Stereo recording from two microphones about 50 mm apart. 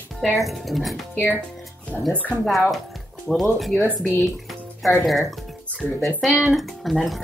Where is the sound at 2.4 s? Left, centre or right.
Centre.